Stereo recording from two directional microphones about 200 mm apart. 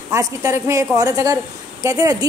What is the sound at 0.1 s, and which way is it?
A woman's voice, 15° right (ahead or behind).